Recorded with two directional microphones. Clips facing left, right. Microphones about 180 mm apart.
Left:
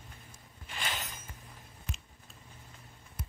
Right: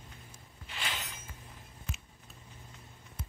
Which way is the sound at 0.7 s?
45° left (ahead or behind).